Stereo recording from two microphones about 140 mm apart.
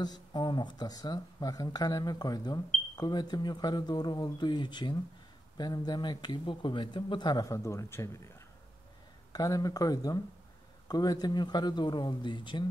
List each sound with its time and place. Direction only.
0.0 s speech: 30° left (ahead or behind)
9.3 s speech: 25° left (ahead or behind)